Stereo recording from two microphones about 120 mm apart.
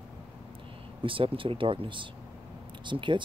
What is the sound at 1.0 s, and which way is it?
Speech, 45° right (ahead or behind).